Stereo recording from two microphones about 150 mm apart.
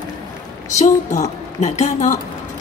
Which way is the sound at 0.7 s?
50° left (ahead or behind).